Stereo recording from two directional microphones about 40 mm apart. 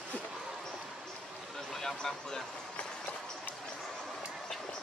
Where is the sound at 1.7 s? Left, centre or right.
Centre.